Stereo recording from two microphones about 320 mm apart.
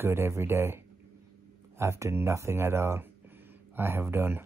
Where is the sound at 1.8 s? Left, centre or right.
Centre.